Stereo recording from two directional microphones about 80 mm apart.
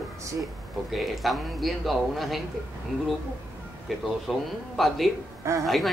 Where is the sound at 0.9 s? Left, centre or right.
Centre.